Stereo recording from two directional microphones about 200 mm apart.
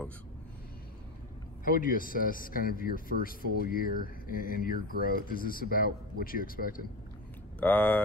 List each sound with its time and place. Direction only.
1.6 s speech: 45° left (ahead or behind)
7.6 s speech: 10° left (ahead or behind)